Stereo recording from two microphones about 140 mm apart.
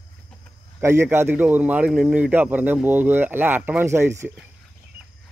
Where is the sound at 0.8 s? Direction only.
20° right (ahead or behind).